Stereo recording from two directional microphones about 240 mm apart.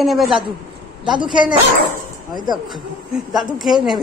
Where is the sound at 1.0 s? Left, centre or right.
Centre.